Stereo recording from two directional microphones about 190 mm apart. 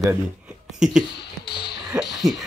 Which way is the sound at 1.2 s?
60° left (ahead or behind).